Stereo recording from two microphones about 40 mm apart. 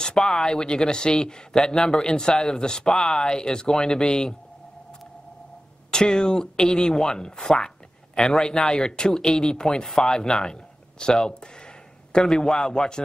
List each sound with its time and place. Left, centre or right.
0.0 s speech: centre
5.9 s speech: centre